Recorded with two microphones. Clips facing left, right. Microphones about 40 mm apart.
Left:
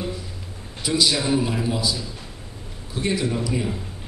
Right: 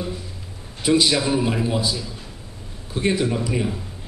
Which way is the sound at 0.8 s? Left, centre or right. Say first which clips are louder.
Right 3 dB; right.